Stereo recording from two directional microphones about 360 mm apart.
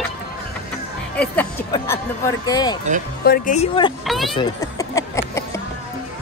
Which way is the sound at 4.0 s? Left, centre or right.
Centre.